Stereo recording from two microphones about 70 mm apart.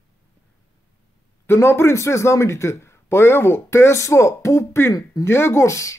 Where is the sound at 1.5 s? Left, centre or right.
Left.